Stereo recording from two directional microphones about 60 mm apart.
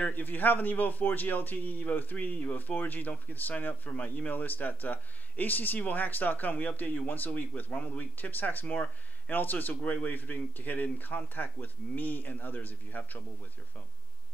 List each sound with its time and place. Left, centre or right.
0.0 s a man's voice: left